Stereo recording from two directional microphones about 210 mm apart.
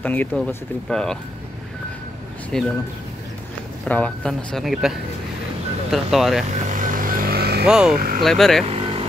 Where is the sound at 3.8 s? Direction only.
5° left (ahead or behind).